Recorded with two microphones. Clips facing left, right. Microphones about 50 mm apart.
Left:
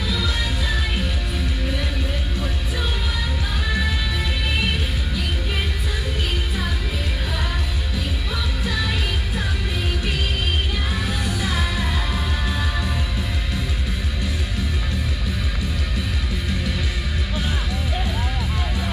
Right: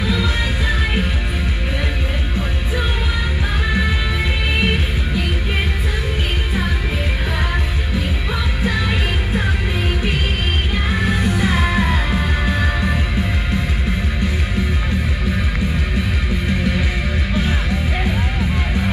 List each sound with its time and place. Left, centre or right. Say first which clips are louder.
0.0 s music: right 5 dB; right
4.6 s music: right 5 dB; right
8.6 s music: right 5 dB; right
10.9 s music: right 6 dB; right
16.4 s music: right 8 dB; right